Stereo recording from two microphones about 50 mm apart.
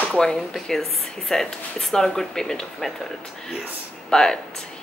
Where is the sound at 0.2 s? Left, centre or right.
Centre.